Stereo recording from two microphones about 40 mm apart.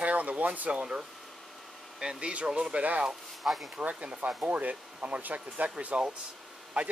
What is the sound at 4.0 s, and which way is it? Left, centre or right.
Speech, right.